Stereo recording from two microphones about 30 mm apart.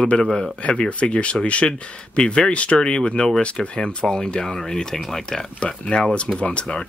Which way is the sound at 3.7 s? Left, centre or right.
Left.